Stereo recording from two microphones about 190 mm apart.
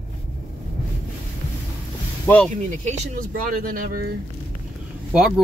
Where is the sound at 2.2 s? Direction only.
5° left (ahead or behind).